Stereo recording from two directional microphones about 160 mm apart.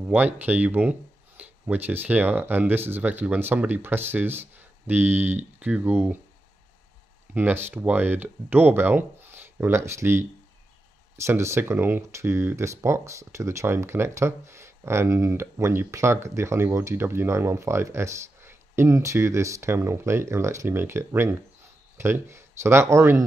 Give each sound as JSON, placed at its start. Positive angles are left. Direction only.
{"t": 0.0, "sound": "speech", "side_deg": -10}
{"t": 7.3, "sound": "speech", "side_deg": -15}